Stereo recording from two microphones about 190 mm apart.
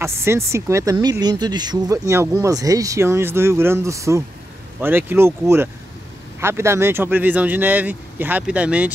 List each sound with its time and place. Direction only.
0.0 s speech: 15° right (ahead or behind)